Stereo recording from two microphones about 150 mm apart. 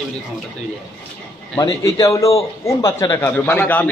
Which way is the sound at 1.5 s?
20° left (ahead or behind).